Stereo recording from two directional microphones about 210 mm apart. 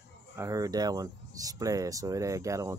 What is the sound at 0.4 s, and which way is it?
Speech, 15° right (ahead or behind).